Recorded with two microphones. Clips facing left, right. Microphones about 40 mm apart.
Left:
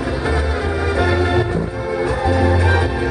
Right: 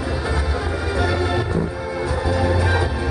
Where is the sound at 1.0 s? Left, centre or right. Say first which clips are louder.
Left 4 dB; centre.